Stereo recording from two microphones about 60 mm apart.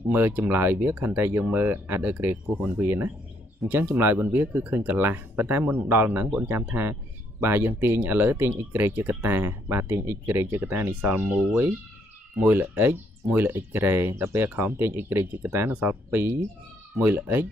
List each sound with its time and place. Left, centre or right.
0.1 s speech: right